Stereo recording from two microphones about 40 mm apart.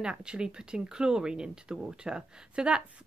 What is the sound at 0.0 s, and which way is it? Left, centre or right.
Speech, right.